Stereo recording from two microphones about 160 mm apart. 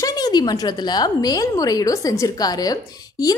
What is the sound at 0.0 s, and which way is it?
A woman's voice, 25° left (ahead or behind).